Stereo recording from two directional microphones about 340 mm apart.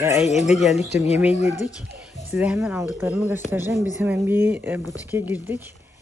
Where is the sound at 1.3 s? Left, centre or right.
Centre.